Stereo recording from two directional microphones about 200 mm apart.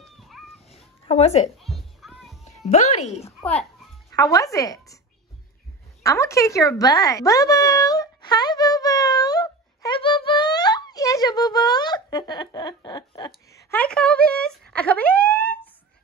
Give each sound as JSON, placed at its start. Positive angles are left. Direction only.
{"t": 0.0, "sound": "a sound", "side_deg": 0}
{"t": 1.0, "sound": "speech", "side_deg": 30}
{"t": 1.6, "sound": "music", "side_deg": 0}
{"t": 2.6, "sound": "speech", "side_deg": 35}
{"t": 4.1, "sound": "speech", "side_deg": 15}
{"t": 6.0, "sound": "a sound", "side_deg": 15}